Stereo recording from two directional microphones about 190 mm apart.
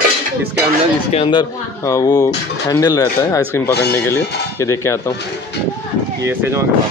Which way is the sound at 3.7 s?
60° left (ahead or behind).